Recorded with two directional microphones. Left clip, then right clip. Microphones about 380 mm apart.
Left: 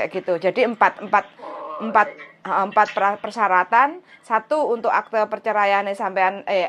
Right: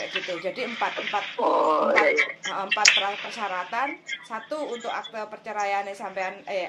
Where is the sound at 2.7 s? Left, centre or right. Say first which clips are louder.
Left 1 dB; left.